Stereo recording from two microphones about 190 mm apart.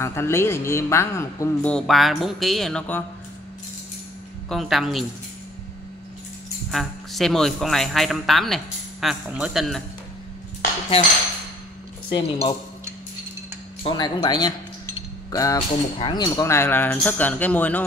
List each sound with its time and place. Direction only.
0.0 s a man's voice: 15° left (ahead or behind)
4.5 s speech: centre (ahead or behind)
6.7 s speech: centre (ahead or behind)
12.1 s speech: 30° left (ahead or behind)
13.8 s a man's voice: 25° left (ahead or behind)